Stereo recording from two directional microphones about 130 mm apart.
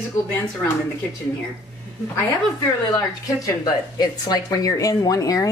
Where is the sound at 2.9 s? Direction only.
30° left (ahead or behind).